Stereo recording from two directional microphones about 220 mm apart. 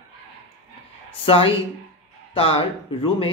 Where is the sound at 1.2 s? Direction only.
25° left (ahead or behind).